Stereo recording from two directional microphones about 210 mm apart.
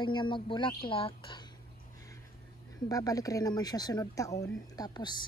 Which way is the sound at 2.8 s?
15° left (ahead or behind).